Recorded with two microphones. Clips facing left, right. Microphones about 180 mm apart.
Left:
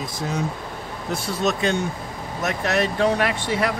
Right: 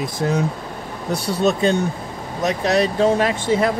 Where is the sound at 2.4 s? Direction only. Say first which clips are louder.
Right 4 dB; 20° right (ahead or behind).